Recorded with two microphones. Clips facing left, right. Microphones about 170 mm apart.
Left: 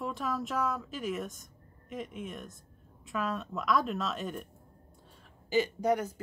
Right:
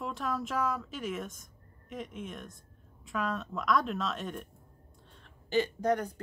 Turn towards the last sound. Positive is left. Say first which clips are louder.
# left 1 dB
turn(degrees=5)  # may be behind; listen again after turning